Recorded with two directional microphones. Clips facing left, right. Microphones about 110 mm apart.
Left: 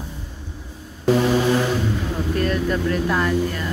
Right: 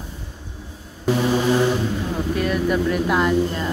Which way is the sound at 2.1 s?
5° right (ahead or behind).